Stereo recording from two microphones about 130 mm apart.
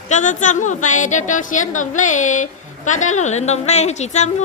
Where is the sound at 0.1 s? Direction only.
70° left (ahead or behind).